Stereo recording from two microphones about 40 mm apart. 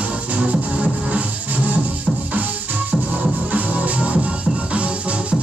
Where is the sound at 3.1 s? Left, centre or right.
Right.